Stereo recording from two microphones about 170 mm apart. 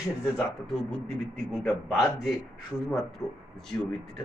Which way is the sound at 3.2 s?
20° left (ahead or behind).